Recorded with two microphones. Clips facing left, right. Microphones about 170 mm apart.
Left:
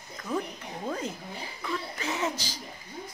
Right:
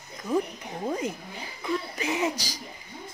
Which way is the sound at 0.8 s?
15° right (ahead or behind).